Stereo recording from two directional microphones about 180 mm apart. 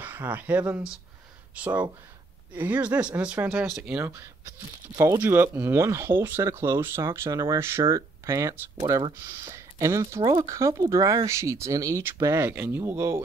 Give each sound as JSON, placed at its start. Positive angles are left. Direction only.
{"t": 0.0, "sound": "speech", "side_deg": -10}
{"t": 10.2, "sound": "speech", "side_deg": -30}
{"t": 10.5, "sound": "speech", "side_deg": -15}